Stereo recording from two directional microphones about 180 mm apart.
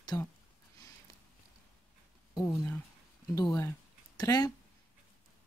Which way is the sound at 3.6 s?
15° left (ahead or behind).